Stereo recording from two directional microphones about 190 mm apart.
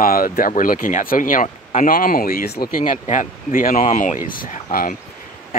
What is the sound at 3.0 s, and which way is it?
Speech, 40° left (ahead or behind).